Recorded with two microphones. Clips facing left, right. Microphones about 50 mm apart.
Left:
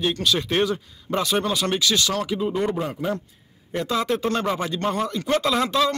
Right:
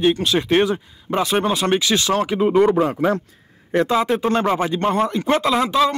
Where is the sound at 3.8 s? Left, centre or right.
Right.